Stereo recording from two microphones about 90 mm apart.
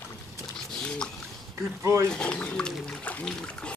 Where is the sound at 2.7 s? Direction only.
Centre (ahead or behind).